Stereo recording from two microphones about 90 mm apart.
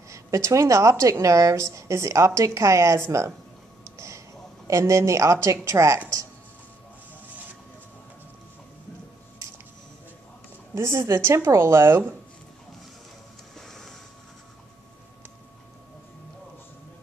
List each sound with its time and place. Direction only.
0.1 s a woman's voice: 35° right (ahead or behind)
4.6 s a woman's voice: 35° right (ahead or behind)
10.7 s a woman's voice: 30° right (ahead or behind)
13.6 s vehicle: 5° left (ahead or behind)